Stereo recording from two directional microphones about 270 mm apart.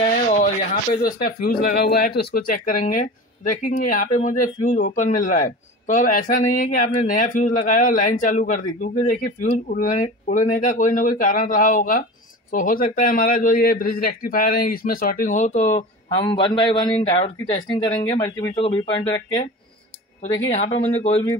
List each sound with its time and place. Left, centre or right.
1.0 s a man's voice: left; by 19.4 s centre
20.5 s speech: left